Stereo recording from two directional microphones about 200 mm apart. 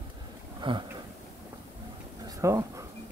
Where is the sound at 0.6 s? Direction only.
20° right (ahead or behind).